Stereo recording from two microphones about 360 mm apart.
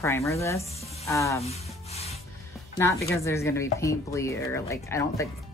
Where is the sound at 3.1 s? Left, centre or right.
Centre.